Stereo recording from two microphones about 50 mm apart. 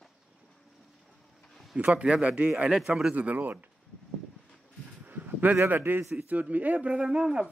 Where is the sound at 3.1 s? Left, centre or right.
Right.